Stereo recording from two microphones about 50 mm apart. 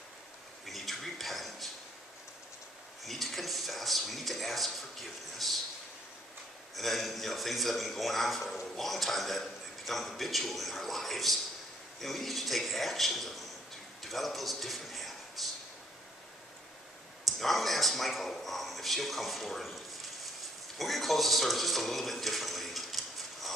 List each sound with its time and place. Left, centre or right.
0.7 s a sound: centre
3.0 s speech: centre
6.7 s a man's voice: centre
17.4 s a man's voice: centre